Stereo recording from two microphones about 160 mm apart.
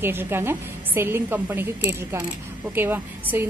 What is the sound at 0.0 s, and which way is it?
A woman's voice, 15° right (ahead or behind).